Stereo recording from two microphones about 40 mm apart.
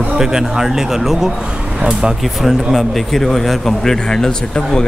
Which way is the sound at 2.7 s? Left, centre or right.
Centre.